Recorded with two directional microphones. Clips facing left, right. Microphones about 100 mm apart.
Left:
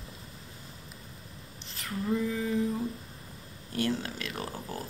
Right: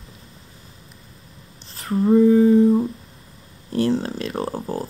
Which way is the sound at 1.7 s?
35° right (ahead or behind).